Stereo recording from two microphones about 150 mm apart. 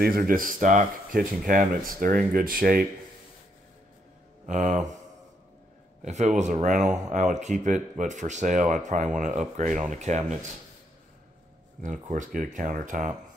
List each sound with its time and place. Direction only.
0.0 s speech: 75° right (ahead or behind)
4.5 s speech: 55° right (ahead or behind)
6.0 s speech: 50° right (ahead or behind)
11.8 s speech: 60° right (ahead or behind)